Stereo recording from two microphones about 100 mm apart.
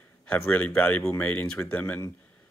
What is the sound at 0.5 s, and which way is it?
Speech, 15° left (ahead or behind).